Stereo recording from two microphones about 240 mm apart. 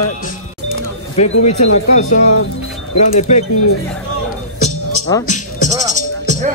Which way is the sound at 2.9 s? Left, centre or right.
Left.